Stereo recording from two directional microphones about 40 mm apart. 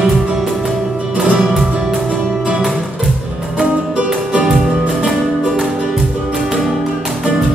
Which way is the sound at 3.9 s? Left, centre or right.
Right.